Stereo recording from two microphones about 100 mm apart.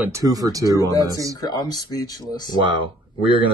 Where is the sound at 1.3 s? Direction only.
40° left (ahead or behind).